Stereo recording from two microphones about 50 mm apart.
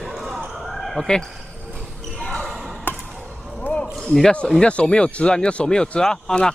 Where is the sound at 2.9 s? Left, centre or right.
Left.